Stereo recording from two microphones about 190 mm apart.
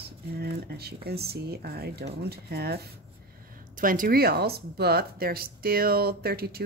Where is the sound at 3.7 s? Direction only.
45° right (ahead or behind).